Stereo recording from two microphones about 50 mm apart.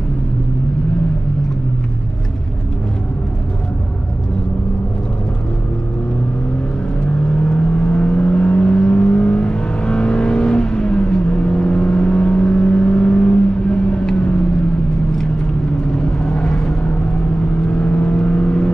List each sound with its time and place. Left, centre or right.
7.2 s car: left
7.8 s vehicle: centre
16.0 s vehicle: centre
16.8 s vehicle: left